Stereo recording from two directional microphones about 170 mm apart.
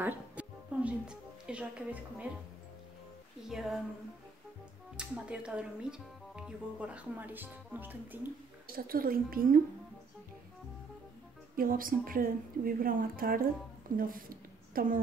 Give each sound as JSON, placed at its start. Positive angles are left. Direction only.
{"t": 0.0, "sound": "music", "side_deg": -10}
{"t": 3.4, "sound": "speech", "side_deg": 0}
{"t": 4.9, "sound": "speech", "side_deg": -5}
{"t": 8.7, "sound": "a woman's voice", "side_deg": -60}
{"t": 11.5, "sound": "a woman's voice", "side_deg": -55}